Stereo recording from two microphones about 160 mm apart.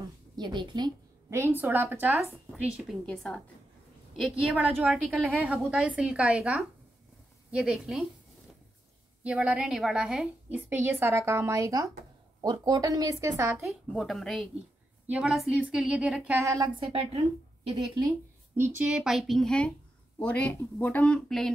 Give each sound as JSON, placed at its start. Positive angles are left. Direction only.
{"t": 0.4, "sound": "speech", "side_deg": -30}
{"t": 1.3, "sound": "a woman's voice", "side_deg": -15}
{"t": 3.1, "sound": "a woman's voice", "side_deg": 5}
{"t": 9.2, "sound": "a woman's voice", "side_deg": -5}
{"t": 10.7, "sound": "a woman's voice", "side_deg": -15}
{"t": 13.7, "sound": "a woman's voice", "side_deg": 0}
{"t": 16.3, "sound": "speech", "side_deg": -20}
{"t": 17.7, "sound": "speech", "side_deg": -30}
{"t": 18.6, "sound": "a woman's voice", "side_deg": -10}